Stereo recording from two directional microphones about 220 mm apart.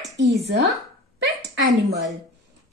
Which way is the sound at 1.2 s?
55° right (ahead or behind).